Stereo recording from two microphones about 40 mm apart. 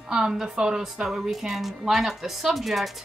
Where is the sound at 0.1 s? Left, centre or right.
Centre.